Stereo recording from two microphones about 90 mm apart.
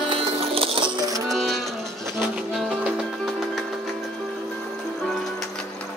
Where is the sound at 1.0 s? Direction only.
40° right (ahead or behind).